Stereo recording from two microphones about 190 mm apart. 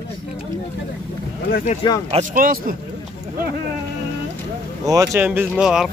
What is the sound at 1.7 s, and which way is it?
Speech, 40° left (ahead or behind).